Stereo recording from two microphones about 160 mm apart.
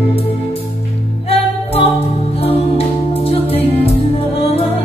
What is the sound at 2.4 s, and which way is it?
Music, 40° left (ahead or behind).